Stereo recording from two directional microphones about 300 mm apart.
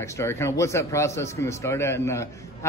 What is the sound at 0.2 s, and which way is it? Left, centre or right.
A man's voice, centre.